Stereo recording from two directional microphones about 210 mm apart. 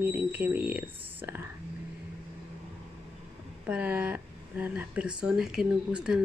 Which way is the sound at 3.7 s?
5° right (ahead or behind).